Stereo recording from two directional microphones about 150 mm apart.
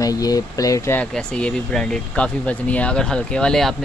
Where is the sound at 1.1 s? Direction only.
5° left (ahead or behind).